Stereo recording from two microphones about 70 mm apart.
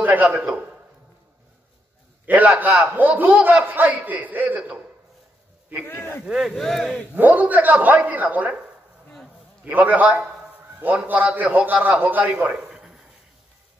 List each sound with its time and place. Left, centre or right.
0.0 s speech: right
2.2 s speech: right
5.9 s speech: left
6.2 s speech: centre
6.5 s speech: centre
7.2 s speech: right
9.7 s speech: right